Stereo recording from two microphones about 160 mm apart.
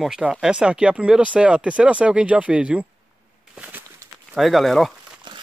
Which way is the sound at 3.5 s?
10° right (ahead or behind).